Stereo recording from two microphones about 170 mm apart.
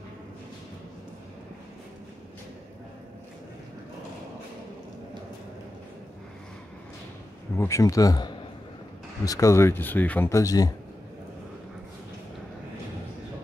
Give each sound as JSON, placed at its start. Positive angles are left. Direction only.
{"t": 7.5, "sound": "speech", "side_deg": 15}